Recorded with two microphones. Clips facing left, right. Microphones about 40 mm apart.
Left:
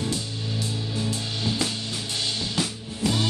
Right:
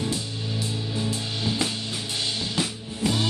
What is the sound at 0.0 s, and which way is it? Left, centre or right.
Music, centre.